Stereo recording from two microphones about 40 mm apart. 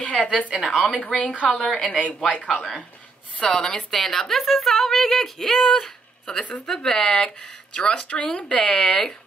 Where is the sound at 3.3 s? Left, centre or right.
Left.